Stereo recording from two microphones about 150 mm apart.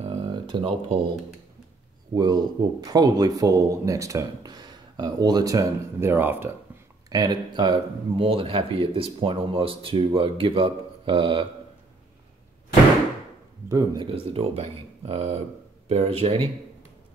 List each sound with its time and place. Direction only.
0.6 s speech: 35° right (ahead or behind)
2.1 s speech: 30° right (ahead or behind)
7.1 s speech: 25° right (ahead or behind)
13.7 s speech: 20° right (ahead or behind)
14.0 s speech: 40° right (ahead or behind)